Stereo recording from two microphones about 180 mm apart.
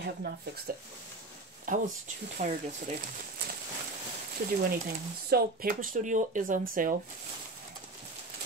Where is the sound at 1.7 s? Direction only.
45° right (ahead or behind).